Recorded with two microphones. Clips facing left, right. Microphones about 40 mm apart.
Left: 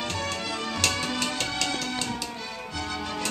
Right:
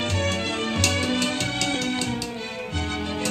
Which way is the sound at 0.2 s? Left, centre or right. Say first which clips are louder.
Right 5 dB; right.